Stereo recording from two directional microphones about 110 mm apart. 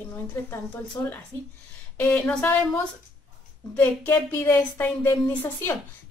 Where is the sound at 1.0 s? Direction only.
20° left (ahead or behind).